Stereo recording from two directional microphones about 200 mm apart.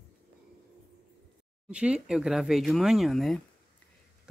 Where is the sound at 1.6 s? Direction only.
5° right (ahead or behind).